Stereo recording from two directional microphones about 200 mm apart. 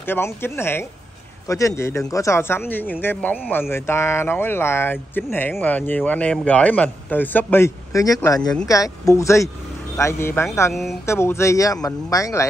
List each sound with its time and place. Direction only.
0.0 s speech: 10° left (ahead or behind)
10.7 s speech: centre (ahead or behind)
11.1 s speech: 15° left (ahead or behind)